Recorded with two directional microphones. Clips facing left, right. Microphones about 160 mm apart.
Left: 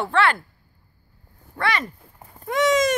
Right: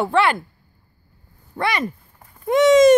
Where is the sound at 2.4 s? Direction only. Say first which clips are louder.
Right 8 dB; 25° right (ahead or behind).